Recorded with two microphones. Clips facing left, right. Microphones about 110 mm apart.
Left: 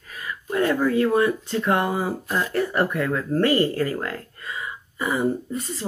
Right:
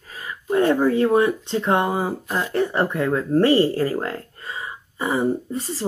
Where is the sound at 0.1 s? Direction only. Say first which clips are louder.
Right 5 dB; 25° right (ahead or behind).